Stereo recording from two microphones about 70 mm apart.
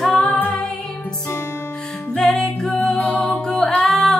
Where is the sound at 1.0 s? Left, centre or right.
Left.